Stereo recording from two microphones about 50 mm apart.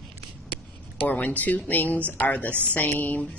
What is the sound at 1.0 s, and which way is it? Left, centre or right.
Speech, left.